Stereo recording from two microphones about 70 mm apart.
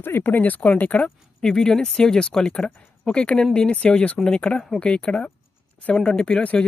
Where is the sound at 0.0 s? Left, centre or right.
Left.